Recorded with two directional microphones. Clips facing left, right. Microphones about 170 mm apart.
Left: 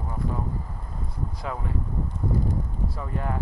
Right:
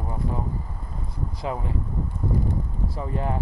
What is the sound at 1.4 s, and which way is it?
Speech, 25° right (ahead or behind).